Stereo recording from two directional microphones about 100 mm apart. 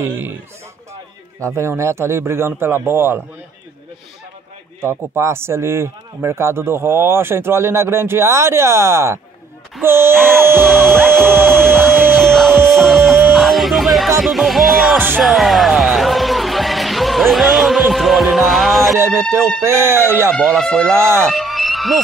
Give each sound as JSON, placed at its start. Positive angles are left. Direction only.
{"t": 0.0, "sound": "a man's voice", "side_deg": -20}
{"t": 1.4, "sound": "a man's voice", "side_deg": -30}
{"t": 4.8, "sound": "a man's voice", "side_deg": -25}
{"t": 10.1, "sound": "music", "side_deg": 5}
{"t": 15.0, "sound": "a man's voice", "side_deg": -20}
{"t": 15.2, "sound": "music", "side_deg": 0}
{"t": 18.9, "sound": "a man's voice", "side_deg": -25}
{"t": 20.5, "sound": "music", "side_deg": 5}
{"t": 20.8, "sound": "a man's voice", "side_deg": -25}
{"t": 21.3, "sound": "a sound", "side_deg": 0}